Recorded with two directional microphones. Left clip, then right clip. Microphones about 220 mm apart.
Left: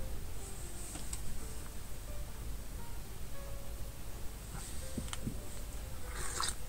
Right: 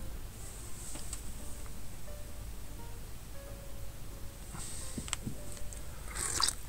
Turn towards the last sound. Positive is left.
turn(degrees=-45)  # may be behind; listen again after turning